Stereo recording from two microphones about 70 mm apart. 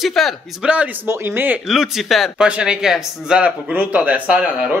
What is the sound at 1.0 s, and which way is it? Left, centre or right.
Speech, right.